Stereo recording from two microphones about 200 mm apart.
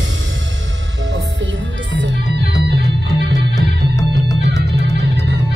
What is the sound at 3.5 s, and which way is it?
Music, 15° left (ahead or behind).